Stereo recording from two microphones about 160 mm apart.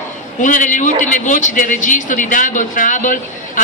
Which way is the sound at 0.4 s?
55° left (ahead or behind).